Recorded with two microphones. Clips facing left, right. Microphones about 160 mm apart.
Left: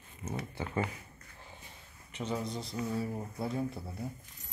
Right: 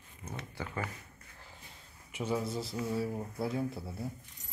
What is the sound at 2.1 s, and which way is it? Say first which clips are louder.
Speech: right 2 dB; 10° right (ahead or behind).